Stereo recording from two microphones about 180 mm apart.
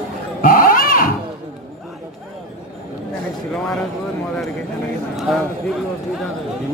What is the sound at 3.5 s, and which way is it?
Speech, centre (ahead or behind).